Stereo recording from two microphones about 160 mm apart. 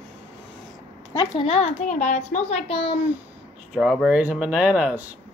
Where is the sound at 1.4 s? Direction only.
40° left (ahead or behind).